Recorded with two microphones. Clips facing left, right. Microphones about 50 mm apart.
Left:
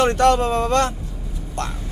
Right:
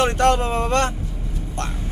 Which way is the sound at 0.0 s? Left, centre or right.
Right.